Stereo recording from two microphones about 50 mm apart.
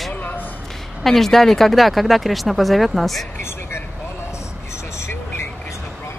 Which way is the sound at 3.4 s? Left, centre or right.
Left.